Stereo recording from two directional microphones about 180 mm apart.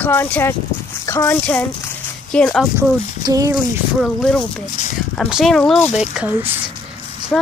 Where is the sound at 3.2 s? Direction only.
20° right (ahead or behind).